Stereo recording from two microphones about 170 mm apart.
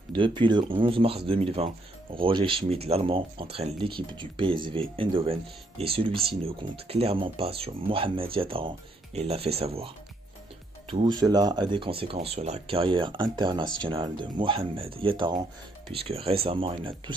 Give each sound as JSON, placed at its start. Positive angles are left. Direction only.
{"t": 0.1, "sound": "speech", "side_deg": -30}
{"t": 10.9, "sound": "speech", "side_deg": -30}